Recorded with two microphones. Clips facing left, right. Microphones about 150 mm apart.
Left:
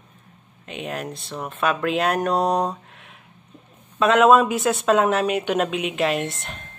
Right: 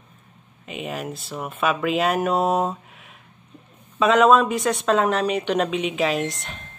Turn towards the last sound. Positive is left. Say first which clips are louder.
# right 1 dB
turn(degrees=0)  # may be behind; listen again after turning